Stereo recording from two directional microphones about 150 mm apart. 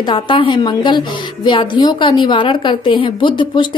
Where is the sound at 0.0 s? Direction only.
35° left (ahead or behind).